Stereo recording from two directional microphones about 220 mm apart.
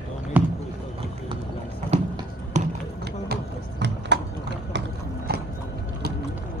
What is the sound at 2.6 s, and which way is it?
Basketball bounce, 30° right (ahead or behind).